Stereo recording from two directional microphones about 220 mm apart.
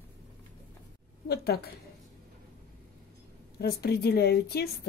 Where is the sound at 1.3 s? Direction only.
45° left (ahead or behind).